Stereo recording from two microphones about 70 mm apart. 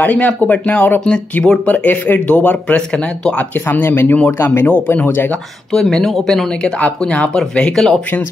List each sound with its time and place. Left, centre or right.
0.0 s speech: left
1.0 s speech: centre
3.6 s speech: left
5.7 s speech: centre